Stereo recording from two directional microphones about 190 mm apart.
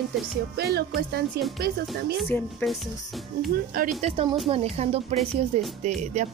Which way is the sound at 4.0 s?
30° right (ahead or behind).